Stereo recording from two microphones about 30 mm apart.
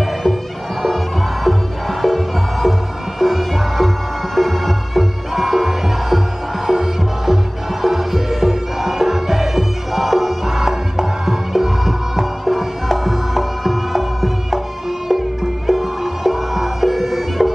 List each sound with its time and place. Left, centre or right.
0.0 s bagpipes: centre
0.8 s music: centre